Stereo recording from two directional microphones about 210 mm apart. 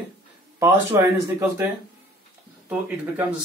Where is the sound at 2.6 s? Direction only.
5° right (ahead or behind).